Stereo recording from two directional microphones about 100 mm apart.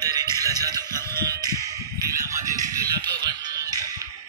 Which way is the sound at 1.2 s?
40° right (ahead or behind).